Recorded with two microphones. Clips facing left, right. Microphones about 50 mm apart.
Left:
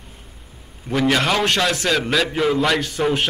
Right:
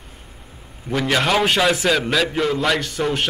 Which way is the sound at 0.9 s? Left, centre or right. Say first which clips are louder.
Even; centre.